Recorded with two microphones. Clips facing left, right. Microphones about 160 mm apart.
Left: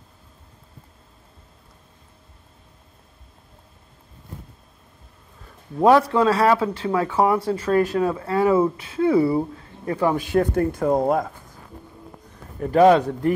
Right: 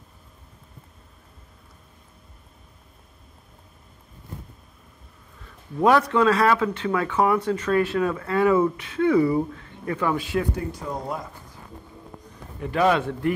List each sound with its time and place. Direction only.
5.8 s speech: 30° left (ahead or behind)
10.1 s speech: 45° left (ahead or behind)
12.5 s speech: 40° left (ahead or behind)